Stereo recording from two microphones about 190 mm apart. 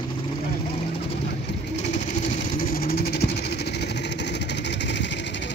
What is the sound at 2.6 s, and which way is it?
Vehicle, 50° left (ahead or behind).